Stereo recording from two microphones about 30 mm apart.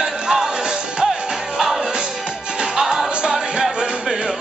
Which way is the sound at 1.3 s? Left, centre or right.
Centre.